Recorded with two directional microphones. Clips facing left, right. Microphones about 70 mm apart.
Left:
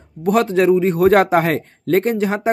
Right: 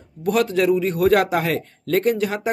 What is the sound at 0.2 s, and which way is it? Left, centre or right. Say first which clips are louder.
A man's voice: left 4 dB; left.